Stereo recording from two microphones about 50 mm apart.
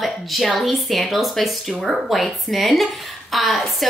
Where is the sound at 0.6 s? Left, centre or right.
Centre.